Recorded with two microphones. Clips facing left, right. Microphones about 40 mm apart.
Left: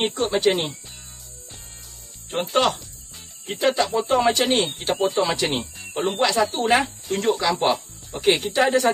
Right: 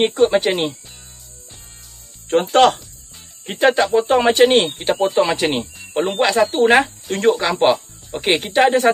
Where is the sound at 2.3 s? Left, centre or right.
Right.